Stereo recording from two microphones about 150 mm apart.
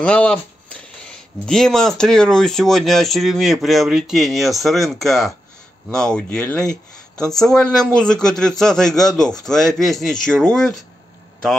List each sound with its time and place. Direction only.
0.0 s speech: 5° left (ahead or behind)